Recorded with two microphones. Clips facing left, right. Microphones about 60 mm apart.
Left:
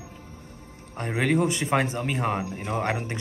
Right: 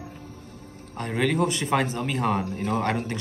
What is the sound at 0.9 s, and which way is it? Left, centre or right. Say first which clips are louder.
A man's voice: left 1 dB; left.